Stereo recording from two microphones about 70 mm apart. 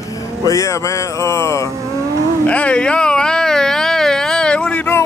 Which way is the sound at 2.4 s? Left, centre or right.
Centre.